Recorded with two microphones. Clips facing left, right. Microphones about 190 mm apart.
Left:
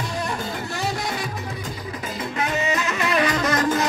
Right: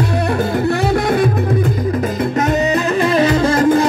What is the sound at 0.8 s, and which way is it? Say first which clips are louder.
Music: right 9 dB; 60° right (ahead or behind).